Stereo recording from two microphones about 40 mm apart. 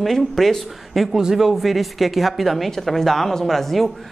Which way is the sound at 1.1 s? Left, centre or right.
Centre.